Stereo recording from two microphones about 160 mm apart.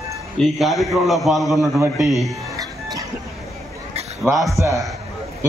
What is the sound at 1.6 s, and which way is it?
Speech, 20° right (ahead or behind).